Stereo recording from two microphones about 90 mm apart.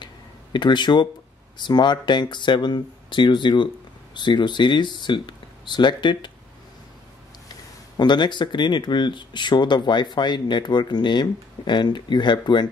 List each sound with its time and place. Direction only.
0.0 s a sound: 60° left (ahead or behind)
1.6 s speech: 55° left (ahead or behind)
8.0 s speech: 55° left (ahead or behind)